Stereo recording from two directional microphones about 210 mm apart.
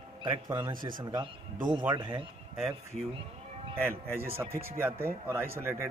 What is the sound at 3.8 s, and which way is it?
A man's voice, 10° right (ahead or behind).